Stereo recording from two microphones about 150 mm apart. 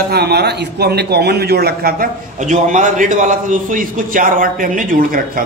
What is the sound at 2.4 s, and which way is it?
A man's voice, 55° right (ahead or behind).